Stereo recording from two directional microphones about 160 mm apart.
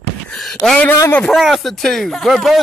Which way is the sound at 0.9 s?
20° left (ahead or behind).